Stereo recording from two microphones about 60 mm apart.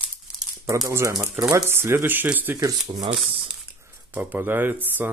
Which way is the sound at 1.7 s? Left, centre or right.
Right.